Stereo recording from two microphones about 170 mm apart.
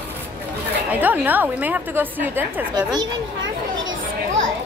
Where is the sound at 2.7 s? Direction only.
25° right (ahead or behind).